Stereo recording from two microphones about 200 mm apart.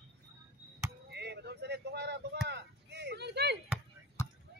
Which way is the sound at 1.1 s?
55° right (ahead or behind).